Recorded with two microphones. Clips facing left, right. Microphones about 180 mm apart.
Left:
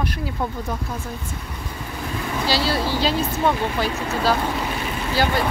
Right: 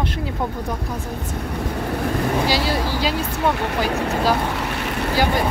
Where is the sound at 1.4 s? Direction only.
65° right (ahead or behind).